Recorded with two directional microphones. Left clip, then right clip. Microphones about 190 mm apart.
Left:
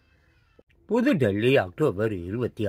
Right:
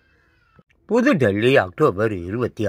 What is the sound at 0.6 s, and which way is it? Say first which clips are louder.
Speech: right 6 dB; 15° right (ahead or behind).